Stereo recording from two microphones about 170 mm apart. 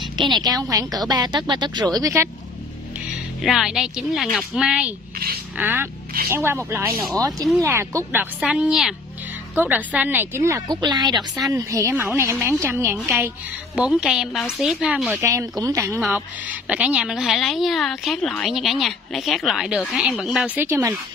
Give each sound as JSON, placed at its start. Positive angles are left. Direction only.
{"t": 0.2, "sound": "a woman's voice", "side_deg": -25}
{"t": 3.4, "sound": "a woman's voice", "side_deg": 0}
{"t": 11.1, "sound": "a woman's voice", "side_deg": 0}
{"t": 11.5, "sound": "a woman's voice", "side_deg": -15}
{"t": 15.1, "sound": "a woman's voice", "side_deg": -20}
{"t": 16.0, "sound": "a woman's voice", "side_deg": -5}